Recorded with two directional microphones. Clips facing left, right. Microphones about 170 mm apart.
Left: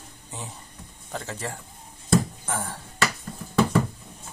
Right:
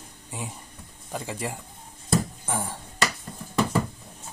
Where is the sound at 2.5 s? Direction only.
15° right (ahead or behind).